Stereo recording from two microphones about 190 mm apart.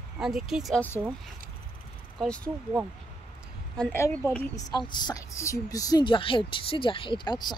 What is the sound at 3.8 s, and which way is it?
A woman's voice, 10° left (ahead or behind).